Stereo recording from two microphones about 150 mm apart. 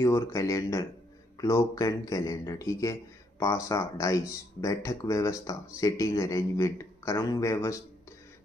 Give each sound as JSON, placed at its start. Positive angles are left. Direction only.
{"t": 0.0, "sound": "a man's voice", "side_deg": 20}